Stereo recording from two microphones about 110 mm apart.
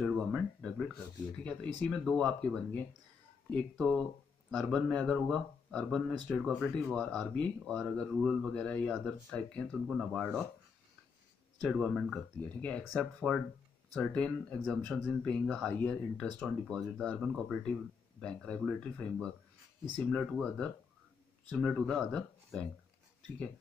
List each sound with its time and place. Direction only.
0.0 s a sound: 5° left (ahead or behind)
1.4 s speech: 10° left (ahead or behind)
11.6 s speech: centre (ahead or behind)
20.1 s speech: 5° left (ahead or behind)